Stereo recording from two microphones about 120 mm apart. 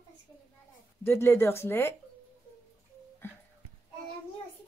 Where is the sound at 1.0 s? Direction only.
20° left (ahead or behind).